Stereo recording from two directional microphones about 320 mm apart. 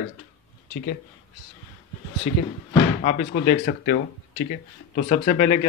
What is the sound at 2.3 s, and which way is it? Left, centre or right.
Speech, left.